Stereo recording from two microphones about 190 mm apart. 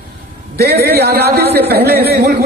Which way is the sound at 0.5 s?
55° right (ahead or behind).